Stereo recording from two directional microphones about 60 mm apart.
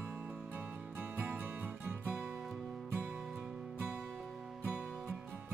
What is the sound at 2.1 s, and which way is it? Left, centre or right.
Music, centre.